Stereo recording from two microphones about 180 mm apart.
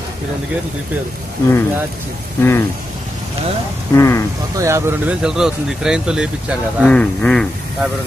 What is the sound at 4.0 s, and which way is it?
Speech, 15° left (ahead or behind).